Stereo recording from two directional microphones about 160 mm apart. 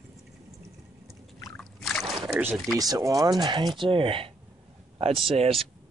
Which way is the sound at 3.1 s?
25° right (ahead or behind).